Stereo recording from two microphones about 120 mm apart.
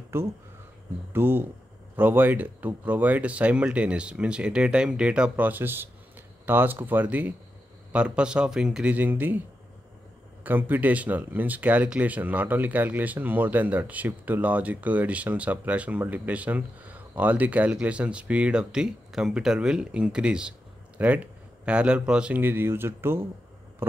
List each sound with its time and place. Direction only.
0.1 s speech: 20° right (ahead or behind)
10.4 s speech: 15° right (ahead or behind)